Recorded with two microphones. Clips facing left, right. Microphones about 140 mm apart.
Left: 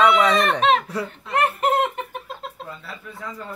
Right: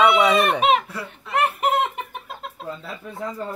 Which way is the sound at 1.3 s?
5° right (ahead or behind).